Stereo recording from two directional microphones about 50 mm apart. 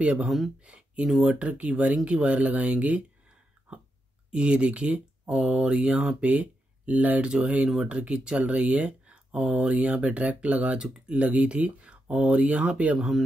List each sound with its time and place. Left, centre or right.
0.6 s speech: right
4.3 s speech: right
5.3 s speech: centre
7.6 s speech: centre
7.9 s speech: right
12.9 s speech: centre